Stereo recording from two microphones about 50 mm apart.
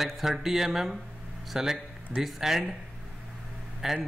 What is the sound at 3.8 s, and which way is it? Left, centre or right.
Speech, centre.